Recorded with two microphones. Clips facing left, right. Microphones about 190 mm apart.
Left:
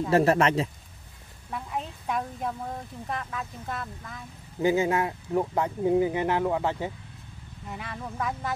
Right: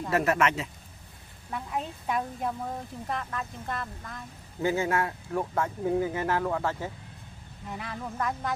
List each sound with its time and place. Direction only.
0.1 s speech: 30° left (ahead or behind)
1.5 s a woman's voice: centre (ahead or behind)
4.6 s speech: 20° left (ahead or behind)
7.7 s speech: centre (ahead or behind)